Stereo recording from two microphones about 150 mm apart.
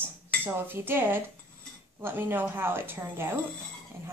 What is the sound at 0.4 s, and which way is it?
A woman's voice, 15° right (ahead or behind).